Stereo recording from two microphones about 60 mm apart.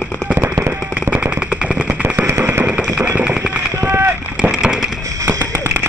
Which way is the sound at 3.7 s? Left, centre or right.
Right.